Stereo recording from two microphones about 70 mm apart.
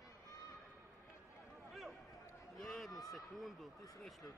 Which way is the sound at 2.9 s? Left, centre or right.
Left.